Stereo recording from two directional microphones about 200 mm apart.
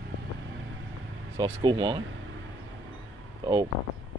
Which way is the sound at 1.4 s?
20° right (ahead or behind).